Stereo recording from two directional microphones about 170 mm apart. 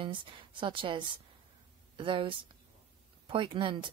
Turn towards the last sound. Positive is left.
turn(degrees=-30)  # may be behind; listen again after turning